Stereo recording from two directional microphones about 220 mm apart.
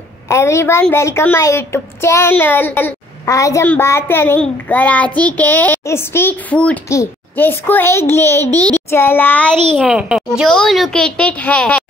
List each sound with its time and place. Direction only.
0.3 s a woman's voice: 10° left (ahead or behind)